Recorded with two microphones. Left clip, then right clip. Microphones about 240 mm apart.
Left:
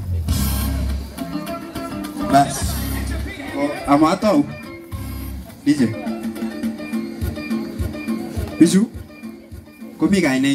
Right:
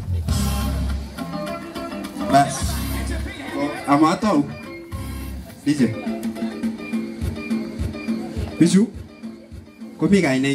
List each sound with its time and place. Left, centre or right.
0.3 s music: centre
5.7 s music: centre
9.9 s speech: centre